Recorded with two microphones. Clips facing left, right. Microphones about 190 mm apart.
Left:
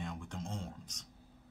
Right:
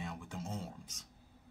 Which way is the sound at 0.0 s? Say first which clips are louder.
Left 1 dB; 5° right (ahead or behind).